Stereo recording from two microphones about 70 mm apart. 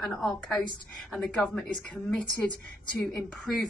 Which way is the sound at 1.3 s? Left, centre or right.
Centre.